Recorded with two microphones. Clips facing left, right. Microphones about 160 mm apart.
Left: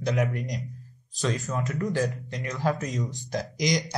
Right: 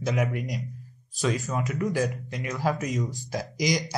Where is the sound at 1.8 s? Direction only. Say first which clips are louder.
Even; 15° right (ahead or behind).